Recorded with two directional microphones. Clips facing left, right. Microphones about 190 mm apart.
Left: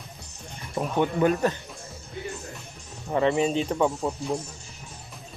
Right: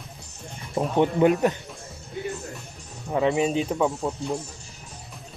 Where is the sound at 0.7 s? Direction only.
25° right (ahead or behind).